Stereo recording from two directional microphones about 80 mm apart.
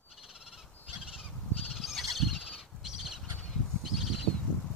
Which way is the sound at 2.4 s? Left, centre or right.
Centre.